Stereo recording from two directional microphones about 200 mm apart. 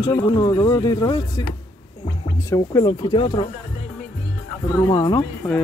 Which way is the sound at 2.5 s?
15° left (ahead or behind).